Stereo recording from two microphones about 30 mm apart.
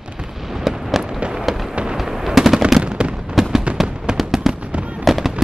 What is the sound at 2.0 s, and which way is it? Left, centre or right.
Machine gun, centre.